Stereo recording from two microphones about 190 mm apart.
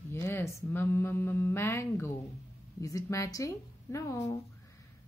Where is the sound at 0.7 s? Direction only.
10° left (ahead or behind).